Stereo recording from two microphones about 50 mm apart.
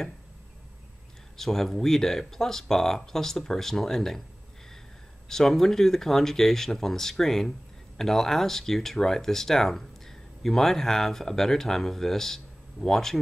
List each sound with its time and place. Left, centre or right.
1.3 s speech: centre
5.3 s speech: centre